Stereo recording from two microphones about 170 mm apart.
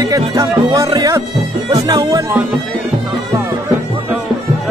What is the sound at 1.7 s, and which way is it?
Speech, 20° right (ahead or behind).